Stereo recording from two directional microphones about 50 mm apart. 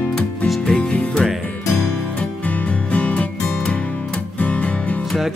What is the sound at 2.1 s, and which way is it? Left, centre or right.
Music, left.